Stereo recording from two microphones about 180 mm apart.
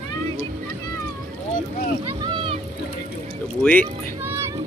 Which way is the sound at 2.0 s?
25° right (ahead or behind).